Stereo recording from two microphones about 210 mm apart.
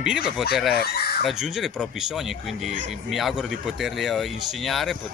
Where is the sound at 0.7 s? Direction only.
50° left (ahead or behind).